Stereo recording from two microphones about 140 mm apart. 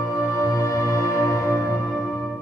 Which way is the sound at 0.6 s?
20° left (ahead or behind).